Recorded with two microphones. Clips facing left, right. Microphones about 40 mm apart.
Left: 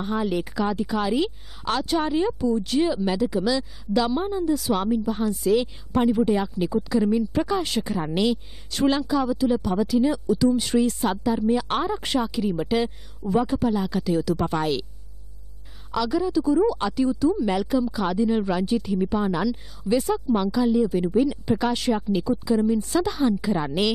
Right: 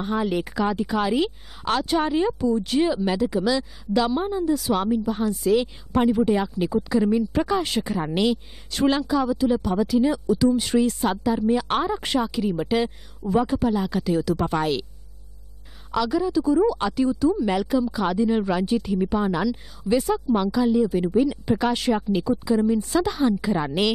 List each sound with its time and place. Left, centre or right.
0.0 s a woman's voice: right
11.0 s a woman's voice: right
15.9 s a woman's voice: right